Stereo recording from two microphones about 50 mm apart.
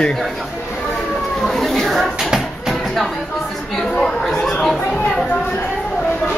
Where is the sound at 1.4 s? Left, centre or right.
Centre.